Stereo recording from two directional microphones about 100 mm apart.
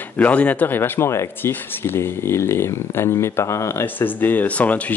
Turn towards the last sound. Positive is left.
turn(degrees=15)  # may be behind; listen again after turning